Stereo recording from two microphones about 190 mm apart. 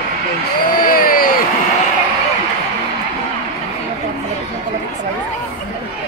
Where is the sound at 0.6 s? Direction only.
50° left (ahead or behind).